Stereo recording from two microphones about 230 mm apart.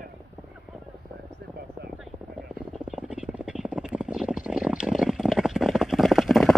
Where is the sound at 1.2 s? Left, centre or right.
Right.